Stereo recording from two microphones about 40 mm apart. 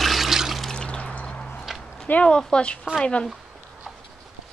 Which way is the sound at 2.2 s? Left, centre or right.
Left.